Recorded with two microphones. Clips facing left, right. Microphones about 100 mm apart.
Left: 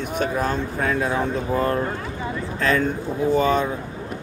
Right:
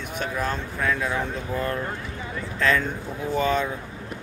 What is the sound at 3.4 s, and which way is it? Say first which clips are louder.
Speech: left 2 dB; 15° left (ahead or behind).